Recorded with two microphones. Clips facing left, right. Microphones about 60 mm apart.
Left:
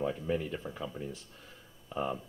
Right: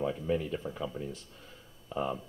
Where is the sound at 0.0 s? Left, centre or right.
Left.